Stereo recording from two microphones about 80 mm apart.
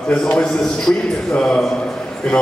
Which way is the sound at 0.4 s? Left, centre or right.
Centre.